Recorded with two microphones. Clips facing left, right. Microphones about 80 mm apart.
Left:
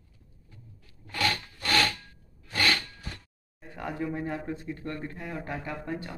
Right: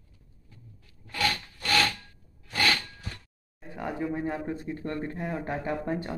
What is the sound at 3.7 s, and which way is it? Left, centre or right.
Speech, centre.